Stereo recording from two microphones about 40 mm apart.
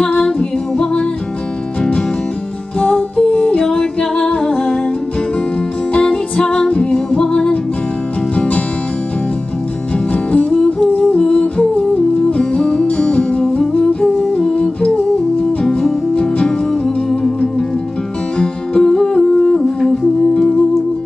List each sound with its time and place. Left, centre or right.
0.2 s music: left
2.8 s music: left
5.9 s music: left
10.1 s music: left
10.9 s humming: left
11.9 s music: left
13.4 s humming: centre
15.6 s music: centre